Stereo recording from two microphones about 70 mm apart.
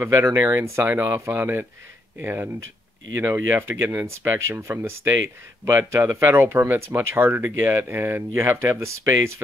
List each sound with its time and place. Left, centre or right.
0.0 s speech: right